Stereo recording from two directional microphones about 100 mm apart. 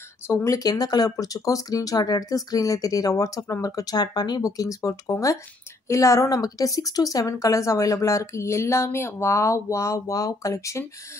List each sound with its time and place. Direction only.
0.3 s a woman's voice: 30° left (ahead or behind)